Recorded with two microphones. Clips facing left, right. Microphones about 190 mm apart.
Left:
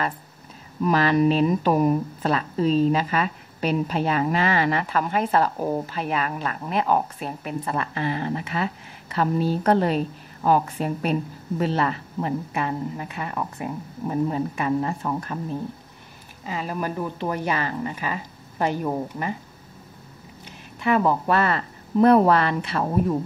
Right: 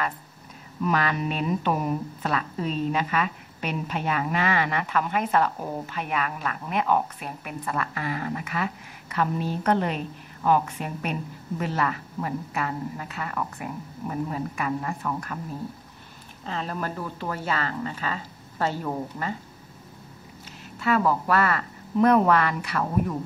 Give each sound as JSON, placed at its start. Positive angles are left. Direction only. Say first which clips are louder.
{"t": 0.8, "sound": "speech", "louder": "left 7 dB", "side_deg": 35}
{"t": 16.4, "sound": "speech", "louder": "left 3 dB", "side_deg": 10}
{"t": 20.8, "sound": "speech", "louder": "left 2 dB", "side_deg": 20}